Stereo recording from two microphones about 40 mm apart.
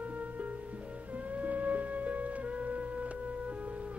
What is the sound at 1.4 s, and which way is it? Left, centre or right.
Music, right.